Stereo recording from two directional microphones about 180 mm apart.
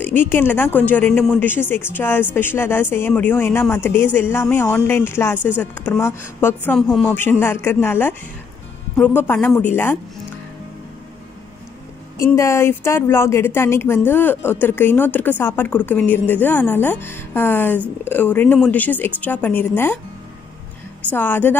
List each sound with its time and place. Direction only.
0.0 s a woman's voice: 10° left (ahead or behind)
12.2 s a woman's voice: 15° left (ahead or behind)
21.1 s a woman's voice: 10° left (ahead or behind)